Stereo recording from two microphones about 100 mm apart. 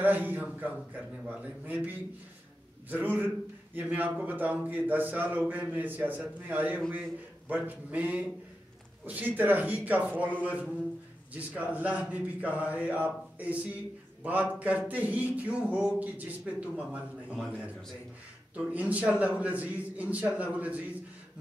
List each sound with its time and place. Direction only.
0.0 s speech: 20° right (ahead or behind)
18.5 s speech: 15° right (ahead or behind)